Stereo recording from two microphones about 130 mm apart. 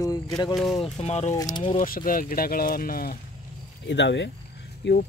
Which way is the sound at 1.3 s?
30° left (ahead or behind).